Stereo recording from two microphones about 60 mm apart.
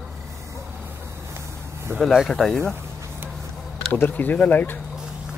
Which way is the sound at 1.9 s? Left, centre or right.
Right.